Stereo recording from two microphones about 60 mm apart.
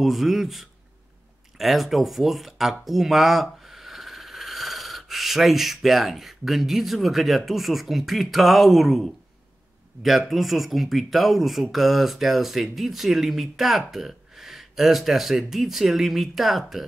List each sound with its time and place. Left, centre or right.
0.0 s speech: centre